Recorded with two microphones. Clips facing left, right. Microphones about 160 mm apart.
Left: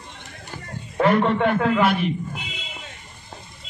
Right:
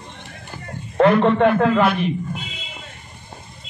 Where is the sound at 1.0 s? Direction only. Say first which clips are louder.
Right 4 dB; 55° right (ahead or behind).